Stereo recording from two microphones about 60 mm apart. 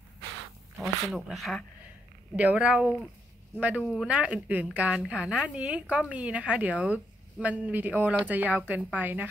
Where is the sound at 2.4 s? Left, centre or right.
Right.